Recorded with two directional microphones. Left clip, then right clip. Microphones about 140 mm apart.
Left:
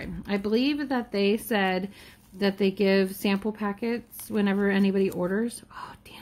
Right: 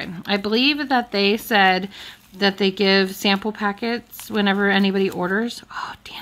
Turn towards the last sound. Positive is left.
turn(degrees=-30)  # may be behind; listen again after turning